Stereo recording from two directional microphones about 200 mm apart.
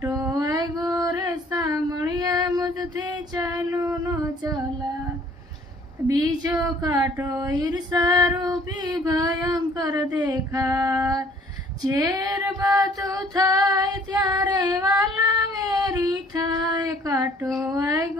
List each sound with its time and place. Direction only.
0.0 s a sound: 15° right (ahead or behind)
6.0 s a woman's voice: 20° right (ahead or behind)
8.4 s child singing: 20° right (ahead or behind)
10.2 s female singing: 20° right (ahead or behind)
15.2 s child singing: 20° right (ahead or behind)
17.6 s a woman's voice: 15° right (ahead or behind)